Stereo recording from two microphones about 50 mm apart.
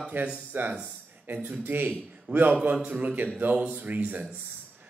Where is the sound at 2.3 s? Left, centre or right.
Centre.